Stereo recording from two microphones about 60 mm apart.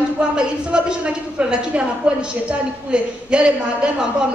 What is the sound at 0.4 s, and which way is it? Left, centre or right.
A man's voice, centre.